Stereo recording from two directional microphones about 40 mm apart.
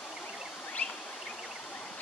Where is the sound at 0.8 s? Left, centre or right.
Left.